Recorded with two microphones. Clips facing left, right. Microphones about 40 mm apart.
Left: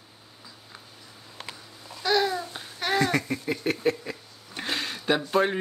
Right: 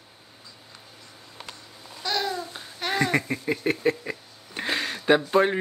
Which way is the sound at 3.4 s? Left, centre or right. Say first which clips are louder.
Right 2 dB; centre.